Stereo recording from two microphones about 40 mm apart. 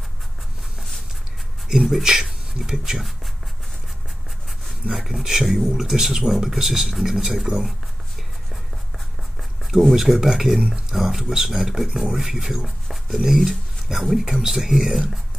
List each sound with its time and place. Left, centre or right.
1.7 s speech: centre
4.9 s speech: centre
9.9 s speech: centre
12.6 s a sound: centre
13.4 s speech: centre